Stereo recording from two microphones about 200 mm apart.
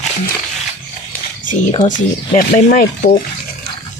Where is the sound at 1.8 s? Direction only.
40° left (ahead or behind).